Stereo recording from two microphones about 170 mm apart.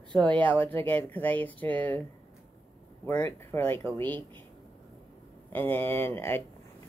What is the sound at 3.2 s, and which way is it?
Speech, 15° left (ahead or behind).